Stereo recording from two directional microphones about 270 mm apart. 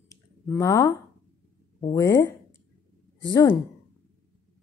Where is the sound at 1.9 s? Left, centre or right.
Centre.